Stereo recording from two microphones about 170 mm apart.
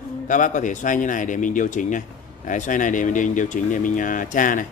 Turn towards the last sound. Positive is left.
turn(degrees=50)  # may be behind; listen again after turning